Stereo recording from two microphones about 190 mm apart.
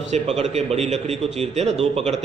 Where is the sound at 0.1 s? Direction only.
35° right (ahead or behind).